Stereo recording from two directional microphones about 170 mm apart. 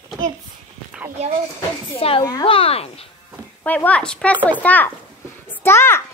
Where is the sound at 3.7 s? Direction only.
10° left (ahead or behind).